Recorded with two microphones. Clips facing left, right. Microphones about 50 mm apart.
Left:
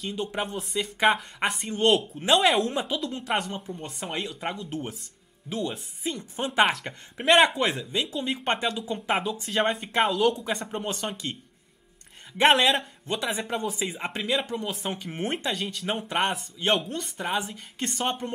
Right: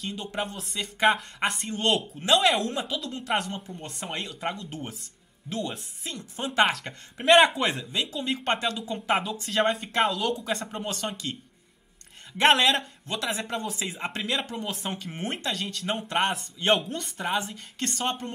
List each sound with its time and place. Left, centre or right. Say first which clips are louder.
0.0 s a man's voice: left 2 dB; centre
6.0 s a man's voice: left 3 dB; centre
12.4 s a man's voice: left 1 dB; centre